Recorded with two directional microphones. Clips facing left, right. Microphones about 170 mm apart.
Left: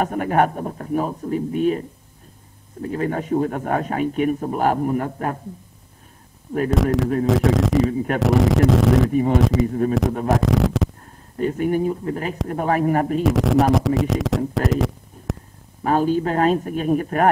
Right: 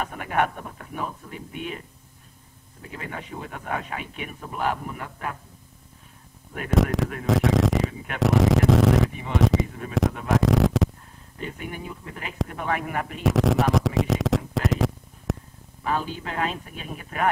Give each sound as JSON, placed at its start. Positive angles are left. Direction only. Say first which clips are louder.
{"t": 0.0, "sound": "a man's voice", "louder": "left 7 dB", "side_deg": 45}
{"t": 6.7, "sound": "speech", "louder": "left 1 dB", "side_deg": 0}
{"t": 7.2, "sound": "a sound", "louder": "even", "side_deg": 0}
{"t": 9.1, "sound": "a man's voice", "louder": "left 11 dB", "side_deg": 45}
{"t": 9.4, "sound": "speech", "louder": "left 3 dB", "side_deg": 0}
{"t": 9.7, "sound": "speech", "louder": "left 15 dB", "side_deg": 40}
{"t": 10.2, "sound": "speech", "louder": "even", "side_deg": 0}
{"t": 11.3, "sound": "a man's voice", "louder": "left 14 dB", "side_deg": 45}
{"t": 13.2, "sound": "a man's voice", "louder": "left 1 dB", "side_deg": 0}
{"t": 15.8, "sound": "a man's voice", "louder": "left 10 dB", "side_deg": 45}